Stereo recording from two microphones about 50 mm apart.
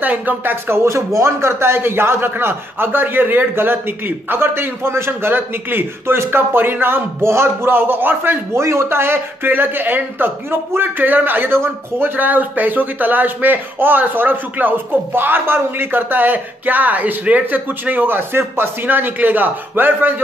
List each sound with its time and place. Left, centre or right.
0.0 s speech: right
0.8 s a man's voice: right
8.5 s a man's voice: right
12.2 s a man's voice: right